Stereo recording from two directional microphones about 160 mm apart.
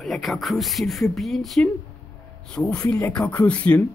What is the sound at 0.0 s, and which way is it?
Speech, centre (ahead or behind).